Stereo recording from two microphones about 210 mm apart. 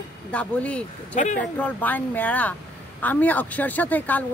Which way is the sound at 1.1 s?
35° left (ahead or behind).